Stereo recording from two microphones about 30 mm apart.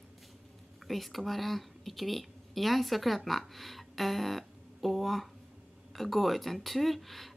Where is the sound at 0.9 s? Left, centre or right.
Centre.